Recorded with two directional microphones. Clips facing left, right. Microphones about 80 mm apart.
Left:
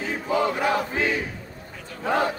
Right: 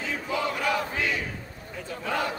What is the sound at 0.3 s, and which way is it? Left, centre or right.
Battle cry, left.